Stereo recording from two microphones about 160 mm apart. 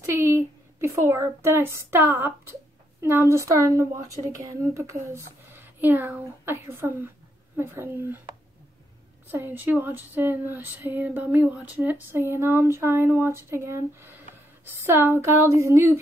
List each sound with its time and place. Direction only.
0.0 s a woman's voice: 15° right (ahead or behind)
3.0 s female singing: 15° right (ahead or behind)
9.3 s female singing: 10° right (ahead or behind)